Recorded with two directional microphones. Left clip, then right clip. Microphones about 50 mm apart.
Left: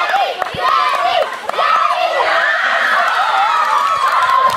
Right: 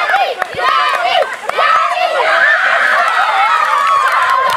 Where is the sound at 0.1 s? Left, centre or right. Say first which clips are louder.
Right 2 dB; right.